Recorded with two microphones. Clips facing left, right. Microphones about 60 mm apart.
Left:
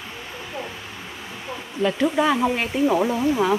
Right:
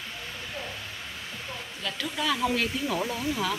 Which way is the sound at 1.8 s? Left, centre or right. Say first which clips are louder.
Left 13 dB; left.